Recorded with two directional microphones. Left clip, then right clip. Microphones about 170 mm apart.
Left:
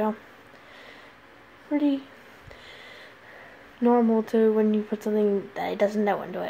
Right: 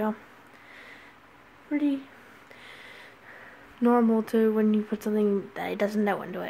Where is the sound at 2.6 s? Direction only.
20° right (ahead or behind).